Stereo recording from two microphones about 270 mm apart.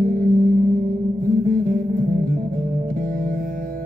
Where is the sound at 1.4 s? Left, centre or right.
Right.